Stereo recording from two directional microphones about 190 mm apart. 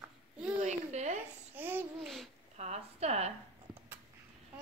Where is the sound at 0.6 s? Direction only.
35° right (ahead or behind).